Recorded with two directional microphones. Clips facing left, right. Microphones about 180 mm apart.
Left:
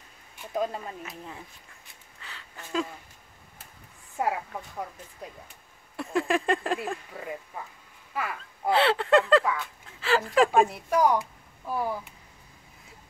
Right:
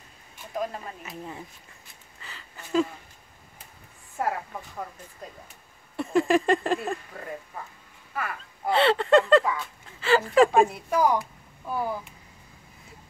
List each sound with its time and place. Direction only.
1.0 s speech: centre (ahead or behind)
2.2 s a sound: centre (ahead or behind)
4.2 s a woman's voice: 15° left (ahead or behind)
5.9 s speech: centre (ahead or behind); by 8.4 s 15° left (ahead or behind)
8.6 s speech: centre (ahead or behind)